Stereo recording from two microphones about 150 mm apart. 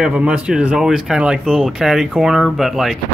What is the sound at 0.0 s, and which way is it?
Speech, 5° right (ahead or behind).